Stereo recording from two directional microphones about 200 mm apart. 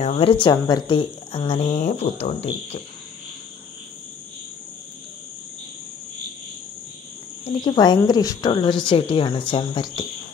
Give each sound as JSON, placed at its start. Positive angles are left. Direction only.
{"t": 0.0, "sound": "speech", "side_deg": 30}
{"t": 7.4, "sound": "speech", "side_deg": 20}